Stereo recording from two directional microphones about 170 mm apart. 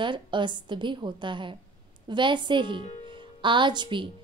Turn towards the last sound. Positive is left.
turn(degrees=-25)  # may be behind; listen again after turning